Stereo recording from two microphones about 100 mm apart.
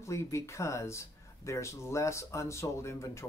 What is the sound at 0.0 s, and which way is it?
Speech, 30° left (ahead or behind).